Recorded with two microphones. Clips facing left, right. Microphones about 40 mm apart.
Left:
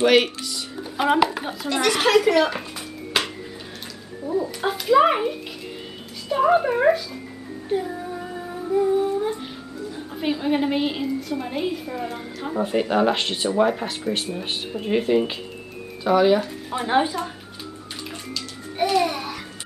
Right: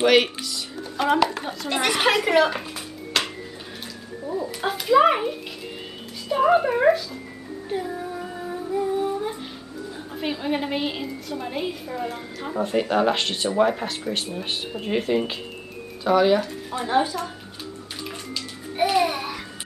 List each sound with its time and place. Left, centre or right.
0.0 s speech: centre
0.9 s speech: centre
1.7 s a woman's voice: centre
3.1 s music: centre
4.2 s a woman's voice: centre
7.7 s music: centre
9.9 s a woman's voice: centre
16.8 s speech: left
18.3 s music: centre